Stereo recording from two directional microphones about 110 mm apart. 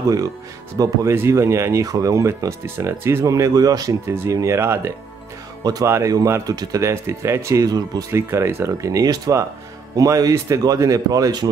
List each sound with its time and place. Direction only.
0.8 s a man's voice: 30° right (ahead or behind)
5.6 s a man's voice: 35° right (ahead or behind)
6.8 s speech: 25° right (ahead or behind)
8.1 s a man's voice: 25° right (ahead or behind)